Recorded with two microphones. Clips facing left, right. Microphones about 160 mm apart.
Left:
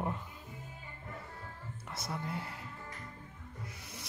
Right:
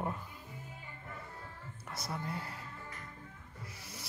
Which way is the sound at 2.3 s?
25° left (ahead or behind).